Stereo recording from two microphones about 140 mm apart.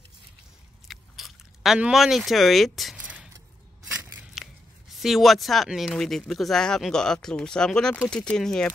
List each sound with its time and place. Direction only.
0.8 s biting: centre (ahead or behind)
3.3 s a sound: 25° right (ahead or behind)
4.4 s scissors: centre (ahead or behind)
5.0 s speech: centre (ahead or behind)